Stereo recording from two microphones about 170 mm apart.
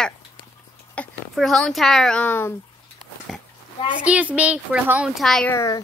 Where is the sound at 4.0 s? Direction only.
10° right (ahead or behind).